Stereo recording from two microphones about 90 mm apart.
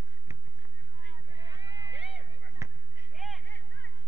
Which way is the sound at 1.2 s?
50° right (ahead or behind).